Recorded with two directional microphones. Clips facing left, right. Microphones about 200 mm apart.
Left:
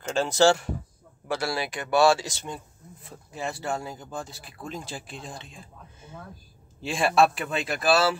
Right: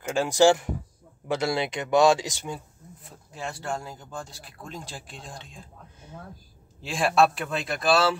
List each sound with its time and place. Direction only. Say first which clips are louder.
0.0 s speech: right 1 dB; 10° right (ahead or behind)
3.3 s speech: left 2 dB; 5° left (ahead or behind)